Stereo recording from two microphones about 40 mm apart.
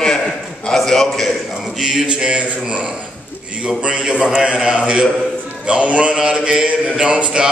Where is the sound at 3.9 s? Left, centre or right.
Right.